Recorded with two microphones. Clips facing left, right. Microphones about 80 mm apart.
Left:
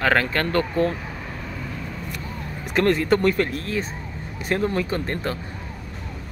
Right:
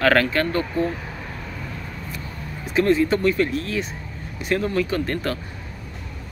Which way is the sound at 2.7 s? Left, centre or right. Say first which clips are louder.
Right 1 dB; left.